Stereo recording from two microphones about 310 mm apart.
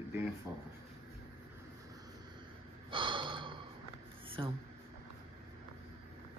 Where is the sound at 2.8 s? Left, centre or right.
Centre.